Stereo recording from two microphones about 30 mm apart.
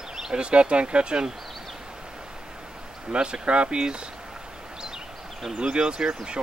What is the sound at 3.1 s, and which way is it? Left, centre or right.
Speech, right.